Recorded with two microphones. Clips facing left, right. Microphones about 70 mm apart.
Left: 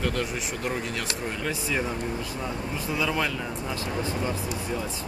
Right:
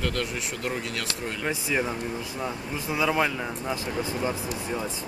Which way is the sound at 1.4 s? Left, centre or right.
Centre.